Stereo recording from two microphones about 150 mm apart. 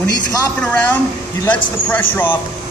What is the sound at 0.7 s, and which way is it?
Speech, 10° left (ahead or behind).